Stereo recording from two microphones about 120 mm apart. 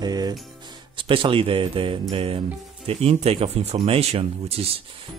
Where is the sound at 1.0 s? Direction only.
45° right (ahead or behind).